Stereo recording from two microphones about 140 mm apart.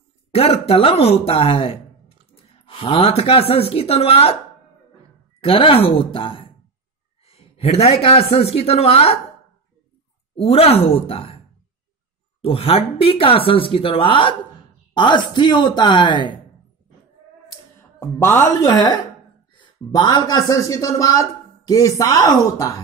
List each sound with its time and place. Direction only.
0.3 s speech: 45° left (ahead or behind)
5.4 s a woman's voice: 40° left (ahead or behind)
10.3 s a woman's voice: 45° left (ahead or behind)
12.4 s speech: 40° left (ahead or behind)
18.0 s speech: 15° left (ahead or behind)